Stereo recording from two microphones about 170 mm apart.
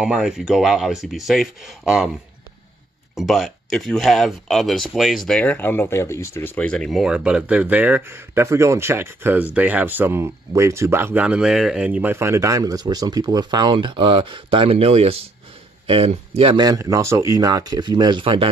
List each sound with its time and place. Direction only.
0.0 s speech: 5° right (ahead or behind)
3.2 s speech: centre (ahead or behind); by 16.6 s 35° right (ahead or behind)
16.6 s speech: 20° right (ahead or behind)